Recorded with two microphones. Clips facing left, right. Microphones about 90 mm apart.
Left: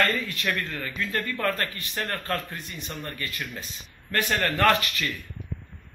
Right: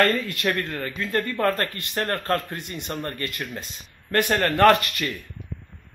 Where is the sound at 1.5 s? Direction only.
55° right (ahead or behind).